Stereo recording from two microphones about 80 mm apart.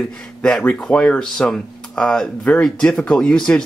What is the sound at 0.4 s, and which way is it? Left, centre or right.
Speech, centre.